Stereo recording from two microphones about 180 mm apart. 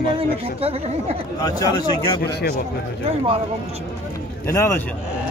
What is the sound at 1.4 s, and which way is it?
Speech, 20° left (ahead or behind).